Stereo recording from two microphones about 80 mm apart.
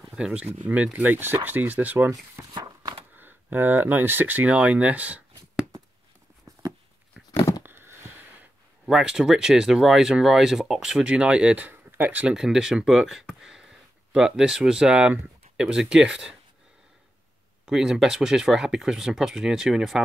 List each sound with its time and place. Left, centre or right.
0.1 s speech: centre
2.5 s walk: right
3.2 s speech: right
6.5 s a sound: right
7.2 s a sound: centre
7.6 s a sound: right
8.8 s speech: centre
12.4 s speech: centre
17.6 s speech: centre